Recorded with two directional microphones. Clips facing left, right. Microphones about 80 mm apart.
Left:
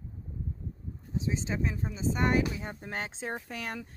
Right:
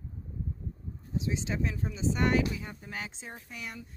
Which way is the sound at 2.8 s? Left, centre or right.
Left.